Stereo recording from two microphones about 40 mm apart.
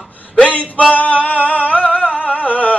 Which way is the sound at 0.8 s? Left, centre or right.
Left.